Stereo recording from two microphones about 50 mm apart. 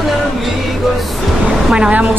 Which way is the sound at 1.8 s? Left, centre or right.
Right.